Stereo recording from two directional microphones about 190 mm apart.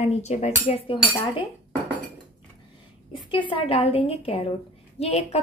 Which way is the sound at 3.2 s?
25° left (ahead or behind).